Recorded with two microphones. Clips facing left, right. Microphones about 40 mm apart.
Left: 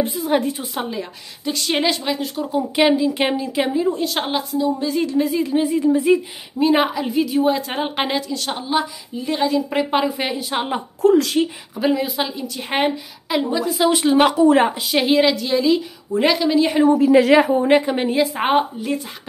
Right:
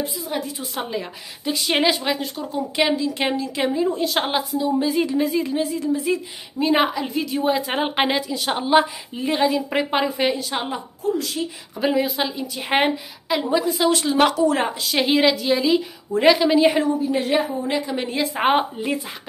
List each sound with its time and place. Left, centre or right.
0.0 s a woman's voice: left
0.7 s a woman's voice: centre
5.5 s a woman's voice: centre
6.6 s a woman's voice: centre
8.7 s a woman's voice: right
9.3 s a woman's voice: centre
11.0 s speech: left
11.8 s a woman's voice: centre
14.1 s a woman's voice: centre
15.0 s a woman's voice: centre
17.0 s a woman's voice: left
17.5 s a woman's voice: left
18.0 s a woman's voice: centre